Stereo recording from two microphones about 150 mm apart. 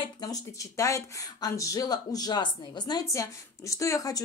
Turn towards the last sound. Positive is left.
turn(degrees=20)  # may be behind; listen again after turning